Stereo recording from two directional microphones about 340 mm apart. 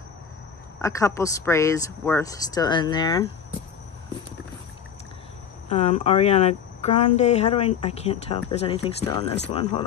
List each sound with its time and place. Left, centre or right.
0.7 s speech: centre
5.7 s speech: centre